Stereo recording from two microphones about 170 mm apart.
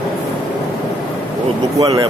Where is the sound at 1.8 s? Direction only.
20° right (ahead or behind).